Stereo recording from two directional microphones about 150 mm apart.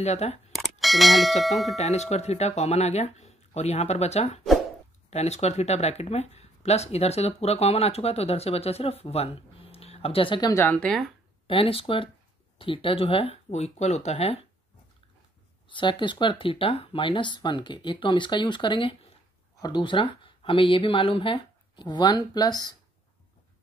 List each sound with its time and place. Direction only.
0.0 s speech: 45° left (ahead or behind)
0.6 s a sound: centre (ahead or behind)
1.8 s speech: 50° left (ahead or behind)
10.5 s speech: 10° left (ahead or behind)
11.4 s speech: 40° left (ahead or behind)
15.7 s speech: 35° left (ahead or behind)